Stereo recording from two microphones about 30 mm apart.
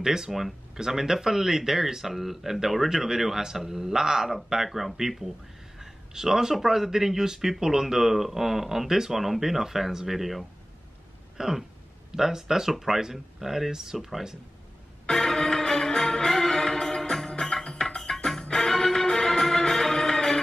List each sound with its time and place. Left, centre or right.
0.0 s speech: centre
0.3 s speech: centre
0.7 s speech: centre
4.6 s speech: centre
5.8 s a sound: centre
6.5 s speech: centre
11.3 s speech: centre
15.0 s music: centre